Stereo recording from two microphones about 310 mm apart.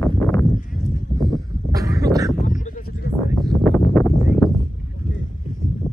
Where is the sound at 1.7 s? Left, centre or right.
Centre.